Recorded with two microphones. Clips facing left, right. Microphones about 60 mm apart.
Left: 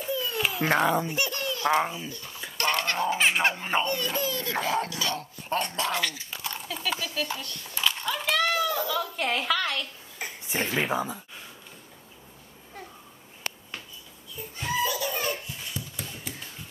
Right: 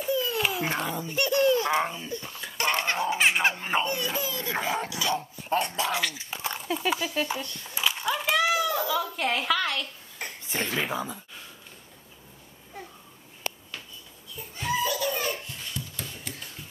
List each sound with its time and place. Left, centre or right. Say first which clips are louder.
0.0 s babbling: right 2 dB; centre
0.7 s speech: left 7 dB; left
1.3 s a sound: right 6 dB; right
1.8 s baby laughter: left 1 dB; centre
2.0 s speech: right 4 dB; centre
2.5 s a sound: even; centre
3.0 s baby laughter: even; centre
3.8 s speech: left 1 dB; centre
6.1 s a sound: right 2 dB; right
6.9 s speech: right 2 dB; centre
7.6 s a sound: even; centre
10.8 s speech: left 3 dB; centre
14.3 s laughter: right 1 dB; centre